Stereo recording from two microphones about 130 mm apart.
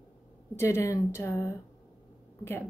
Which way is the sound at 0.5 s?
20° left (ahead or behind).